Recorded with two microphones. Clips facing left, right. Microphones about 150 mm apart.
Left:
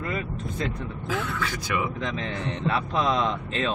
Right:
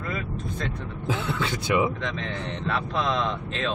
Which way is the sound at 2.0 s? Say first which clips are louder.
Left 1 dB; 5° left (ahead or behind).